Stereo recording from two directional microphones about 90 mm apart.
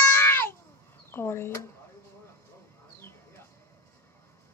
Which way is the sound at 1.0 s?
30° left (ahead or behind).